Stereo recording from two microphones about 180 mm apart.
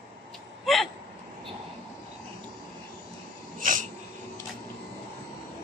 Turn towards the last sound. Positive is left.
turn(degrees=-45)  # may be behind; listen again after turning